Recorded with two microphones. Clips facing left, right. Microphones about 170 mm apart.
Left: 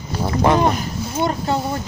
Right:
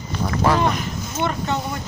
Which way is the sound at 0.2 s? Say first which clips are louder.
Left 3 dB; 25° left (ahead or behind).